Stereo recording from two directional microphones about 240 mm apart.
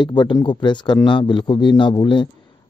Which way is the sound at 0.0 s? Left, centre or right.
Centre.